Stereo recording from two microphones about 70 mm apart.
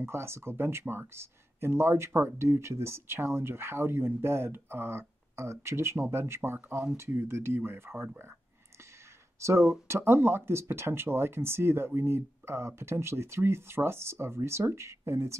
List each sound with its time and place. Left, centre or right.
0.0 s speech: right
9.4 s speech: right